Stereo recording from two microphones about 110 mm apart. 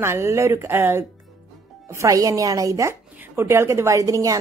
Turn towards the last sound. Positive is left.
turn(degrees=-30)  # may be behind; listen again after turning